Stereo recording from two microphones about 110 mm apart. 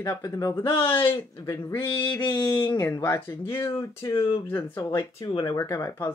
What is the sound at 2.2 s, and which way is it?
Speech, 40° left (ahead or behind).